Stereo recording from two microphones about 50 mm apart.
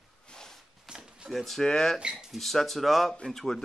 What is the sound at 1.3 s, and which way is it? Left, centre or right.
Speech, centre.